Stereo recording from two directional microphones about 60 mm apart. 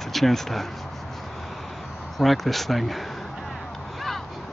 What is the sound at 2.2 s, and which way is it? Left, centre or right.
Speech, centre.